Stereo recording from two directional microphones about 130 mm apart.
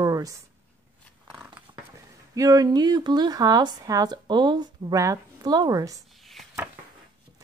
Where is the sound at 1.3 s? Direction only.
10° right (ahead or behind).